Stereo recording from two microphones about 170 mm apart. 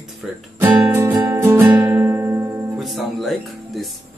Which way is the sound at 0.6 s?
10° right (ahead or behind).